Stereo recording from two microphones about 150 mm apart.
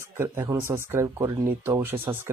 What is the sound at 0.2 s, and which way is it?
Speech, 20° right (ahead or behind).